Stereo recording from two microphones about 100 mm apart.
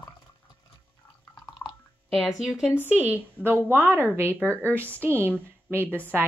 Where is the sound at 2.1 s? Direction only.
5° right (ahead or behind).